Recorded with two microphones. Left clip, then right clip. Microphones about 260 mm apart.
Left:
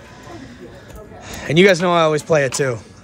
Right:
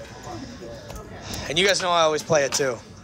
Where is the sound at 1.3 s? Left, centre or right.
Left.